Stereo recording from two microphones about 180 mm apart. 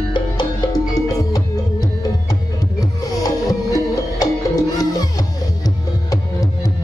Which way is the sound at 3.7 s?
20° left (ahead or behind).